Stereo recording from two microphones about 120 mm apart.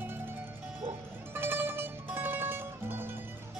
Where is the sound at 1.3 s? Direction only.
20° right (ahead or behind).